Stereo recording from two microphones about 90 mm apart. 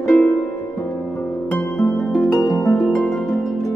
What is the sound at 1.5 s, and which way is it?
Music, 5° left (ahead or behind).